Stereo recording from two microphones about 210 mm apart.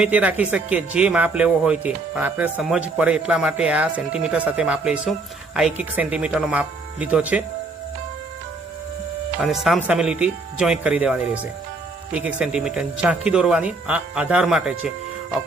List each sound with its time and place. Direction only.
0.0 s speech: 5° right (ahead or behind)
9.4 s speech: centre (ahead or behind)